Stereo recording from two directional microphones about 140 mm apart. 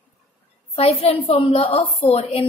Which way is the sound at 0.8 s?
45° left (ahead or behind).